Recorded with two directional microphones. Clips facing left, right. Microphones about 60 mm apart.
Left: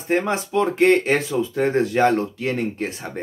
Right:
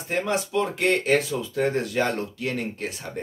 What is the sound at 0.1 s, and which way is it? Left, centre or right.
Speech, left.